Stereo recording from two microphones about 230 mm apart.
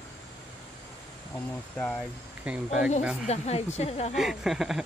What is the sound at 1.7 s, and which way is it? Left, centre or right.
Speech, centre.